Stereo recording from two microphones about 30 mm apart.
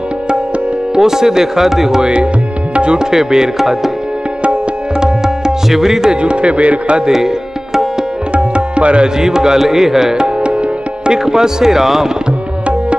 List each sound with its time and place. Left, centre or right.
0.9 s music: centre
2.0 s speech: right
2.7 s music: right
3.0 s music: centre
5.0 s tabla: right
5.7 s music: centre
6.2 s speech: right
7.1 s tabla: centre
8.3 s tabla: right
9.0 s music: right
10.1 s music: right
11.2 s music: centre